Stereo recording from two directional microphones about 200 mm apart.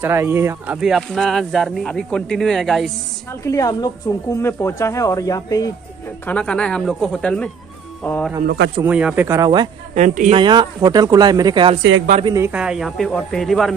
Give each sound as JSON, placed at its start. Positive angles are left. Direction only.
{"t": 0.0, "sound": "speech", "side_deg": -10}
{"t": 3.4, "sound": "speech", "side_deg": 15}
{"t": 6.2, "sound": "speech", "side_deg": 5}
{"t": 8.5, "sound": "speech", "side_deg": -55}
{"t": 8.8, "sound": "speech", "side_deg": -5}
{"t": 9.9, "sound": "a woman's voice", "side_deg": -40}
{"t": 10.3, "sound": "speech", "side_deg": -20}
{"t": 12.3, "sound": "speech", "side_deg": -10}